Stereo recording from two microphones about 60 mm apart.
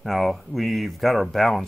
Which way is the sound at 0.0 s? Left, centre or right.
Centre.